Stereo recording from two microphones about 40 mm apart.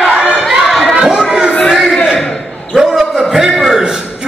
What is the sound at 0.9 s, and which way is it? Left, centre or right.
Children playing, centre.